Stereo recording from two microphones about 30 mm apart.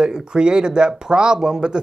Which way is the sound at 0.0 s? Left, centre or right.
Right.